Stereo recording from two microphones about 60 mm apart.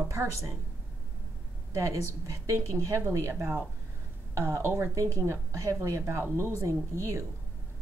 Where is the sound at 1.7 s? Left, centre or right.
Right.